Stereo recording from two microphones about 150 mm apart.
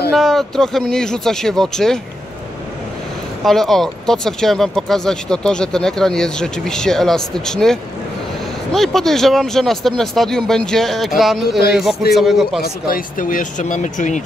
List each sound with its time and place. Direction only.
0.1 s speech: centre (ahead or behind)
3.4 s speech: centre (ahead or behind)
12.6 s speech: 75° left (ahead or behind); by 14.2 s 55° left (ahead or behind)